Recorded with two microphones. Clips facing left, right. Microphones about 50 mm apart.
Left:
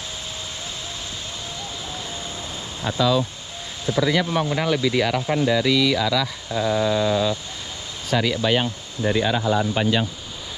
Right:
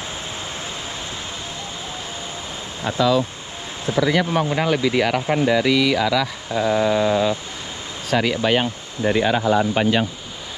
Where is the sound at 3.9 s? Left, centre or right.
Right.